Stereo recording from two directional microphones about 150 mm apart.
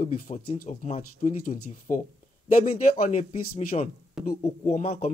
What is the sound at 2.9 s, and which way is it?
Speech, 45° left (ahead or behind).